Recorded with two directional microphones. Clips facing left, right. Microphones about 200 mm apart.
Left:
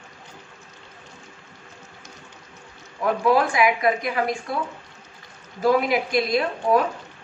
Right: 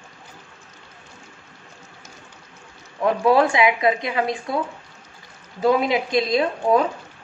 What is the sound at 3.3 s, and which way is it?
A woman's voice, 25° right (ahead or behind).